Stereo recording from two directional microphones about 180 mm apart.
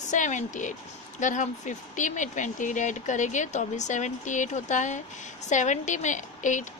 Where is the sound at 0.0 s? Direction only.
40° left (ahead or behind).